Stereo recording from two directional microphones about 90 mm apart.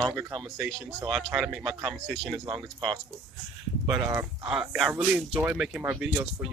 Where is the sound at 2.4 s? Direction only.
60° right (ahead or behind).